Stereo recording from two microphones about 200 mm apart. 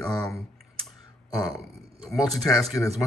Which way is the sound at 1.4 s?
Centre (ahead or behind).